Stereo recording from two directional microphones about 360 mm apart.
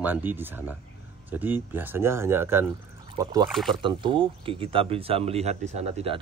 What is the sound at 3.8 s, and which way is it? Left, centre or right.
Speech, centre.